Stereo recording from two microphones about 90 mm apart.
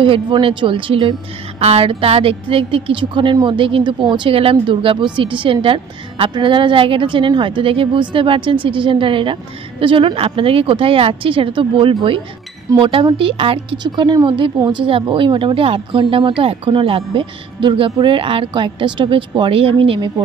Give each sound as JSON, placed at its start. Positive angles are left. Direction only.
{"t": 0.0, "sound": "a woman's voice", "side_deg": -75}
{"t": 1.8, "sound": "a woman's voice", "side_deg": -90}
{"t": 6.3, "sound": "a woman's voice", "side_deg": -70}
{"t": 12.7, "sound": "speech", "side_deg": -60}
{"t": 13.2, "sound": "a woman's voice", "side_deg": -90}
{"t": 13.8, "sound": "speech", "side_deg": -55}
{"t": 14.7, "sound": "a woman's voice", "side_deg": -80}